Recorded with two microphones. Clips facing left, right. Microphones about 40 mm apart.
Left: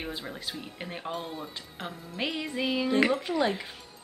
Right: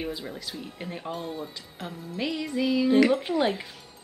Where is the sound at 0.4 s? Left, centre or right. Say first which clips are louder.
Right 1 dB; left.